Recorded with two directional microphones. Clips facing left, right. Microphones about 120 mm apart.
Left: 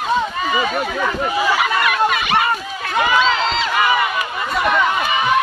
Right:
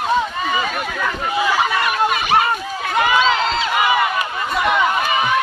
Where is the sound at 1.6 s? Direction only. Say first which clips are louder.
Left 1 dB; 35° right (ahead or behind).